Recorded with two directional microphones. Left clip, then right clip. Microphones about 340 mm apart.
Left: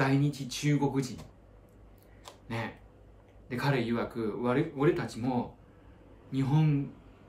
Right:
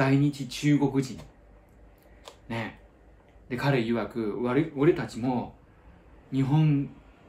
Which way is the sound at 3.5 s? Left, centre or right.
Centre.